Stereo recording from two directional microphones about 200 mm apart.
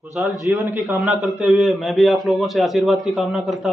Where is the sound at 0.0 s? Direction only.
Centre (ahead or behind).